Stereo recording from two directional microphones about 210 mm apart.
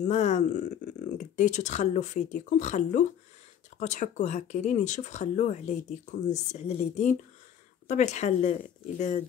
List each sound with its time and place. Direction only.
0.0 s speech: 35° left (ahead or behind)